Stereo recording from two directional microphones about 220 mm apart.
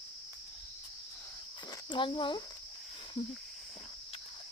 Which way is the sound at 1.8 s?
20° left (ahead or behind).